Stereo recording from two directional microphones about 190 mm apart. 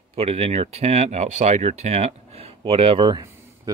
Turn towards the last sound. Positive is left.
turn(degrees=-20)  # may be behind; listen again after turning